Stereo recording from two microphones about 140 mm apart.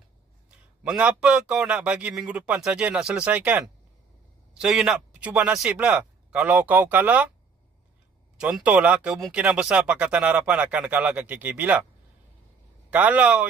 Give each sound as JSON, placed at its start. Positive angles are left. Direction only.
{"t": 0.8, "sound": "speech", "side_deg": -5}
{"t": 8.4, "sound": "speech", "side_deg": -10}
{"t": 12.9, "sound": "speech", "side_deg": -10}